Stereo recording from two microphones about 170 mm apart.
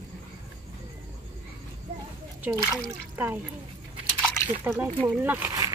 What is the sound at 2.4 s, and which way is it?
Speech, 5° right (ahead or behind).